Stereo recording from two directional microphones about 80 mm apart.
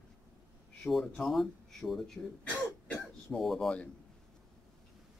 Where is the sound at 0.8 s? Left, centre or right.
Centre.